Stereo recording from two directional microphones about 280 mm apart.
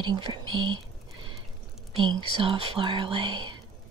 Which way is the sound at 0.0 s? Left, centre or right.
Centre.